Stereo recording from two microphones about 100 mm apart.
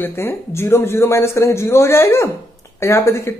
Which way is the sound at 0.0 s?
25° left (ahead or behind).